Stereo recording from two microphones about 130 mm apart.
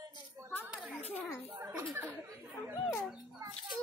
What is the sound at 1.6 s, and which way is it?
Speech, 20° right (ahead or behind).